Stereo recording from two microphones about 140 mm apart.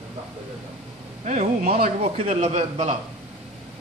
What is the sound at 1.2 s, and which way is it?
Speech, 75° right (ahead or behind).